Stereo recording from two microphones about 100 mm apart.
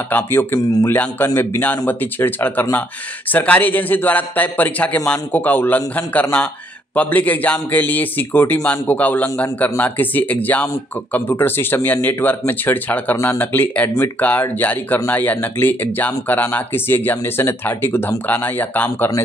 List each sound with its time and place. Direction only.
0.1 s a man's voice: 20° left (ahead or behind)